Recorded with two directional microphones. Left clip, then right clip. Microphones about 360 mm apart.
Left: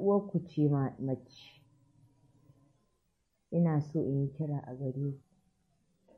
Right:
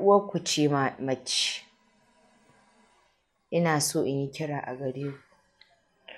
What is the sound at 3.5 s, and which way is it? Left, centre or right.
Speech, centre.